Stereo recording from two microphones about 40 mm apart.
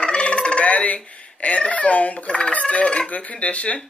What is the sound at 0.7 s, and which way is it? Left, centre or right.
Speech, left.